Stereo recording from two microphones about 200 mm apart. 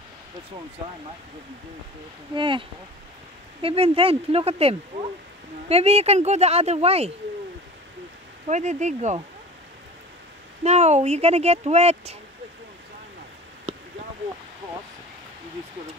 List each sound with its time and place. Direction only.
2.3 s speech: 25° right (ahead or behind)
3.6 s speech: 30° right (ahead or behind)
8.5 s speech: 35° right (ahead or behind)
10.6 s speech: 35° right (ahead or behind)